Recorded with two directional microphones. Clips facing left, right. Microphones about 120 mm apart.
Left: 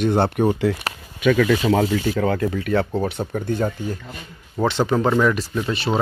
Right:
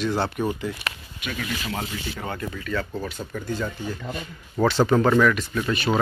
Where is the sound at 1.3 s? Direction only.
90° left; by 3.9 s 50° left (ahead or behind).